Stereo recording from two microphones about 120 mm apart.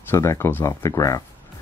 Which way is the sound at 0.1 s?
25° left (ahead or behind).